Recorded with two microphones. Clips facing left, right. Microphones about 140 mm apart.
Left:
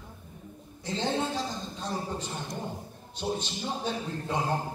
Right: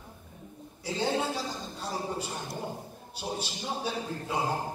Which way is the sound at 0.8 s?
10° right (ahead or behind).